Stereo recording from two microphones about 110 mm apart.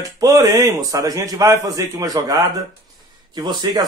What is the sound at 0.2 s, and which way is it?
A man's voice, 35° right (ahead or behind).